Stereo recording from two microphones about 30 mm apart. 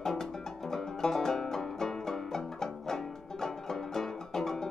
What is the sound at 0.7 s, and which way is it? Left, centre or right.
Music, centre.